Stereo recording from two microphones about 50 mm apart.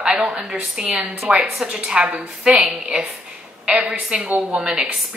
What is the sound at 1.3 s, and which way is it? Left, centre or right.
A woman's voice, right.